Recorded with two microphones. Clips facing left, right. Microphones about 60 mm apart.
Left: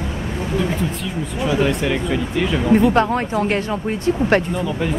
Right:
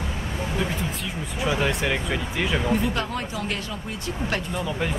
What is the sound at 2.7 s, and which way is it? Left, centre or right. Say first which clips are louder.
Speech: left 10 dB; left.